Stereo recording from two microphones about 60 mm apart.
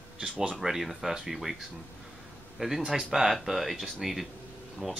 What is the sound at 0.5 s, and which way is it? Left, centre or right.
Speech, centre.